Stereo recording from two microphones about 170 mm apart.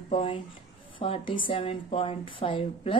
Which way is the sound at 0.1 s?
30° left (ahead or behind).